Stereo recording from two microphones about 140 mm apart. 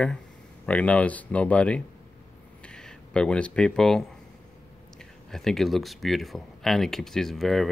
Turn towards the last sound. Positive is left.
turn(degrees=0)  # may be behind; listen again after turning